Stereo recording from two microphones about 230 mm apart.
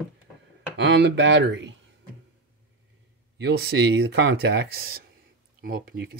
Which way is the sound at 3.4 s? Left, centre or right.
Right.